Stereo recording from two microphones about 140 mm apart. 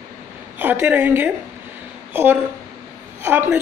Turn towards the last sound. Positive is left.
turn(degrees=-15)  # may be behind; listen again after turning